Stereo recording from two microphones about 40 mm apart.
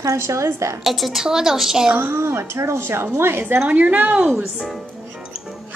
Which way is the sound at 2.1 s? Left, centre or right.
Right.